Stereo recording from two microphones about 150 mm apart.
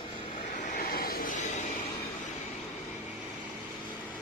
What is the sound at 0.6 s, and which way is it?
Vehicle, 65° left (ahead or behind).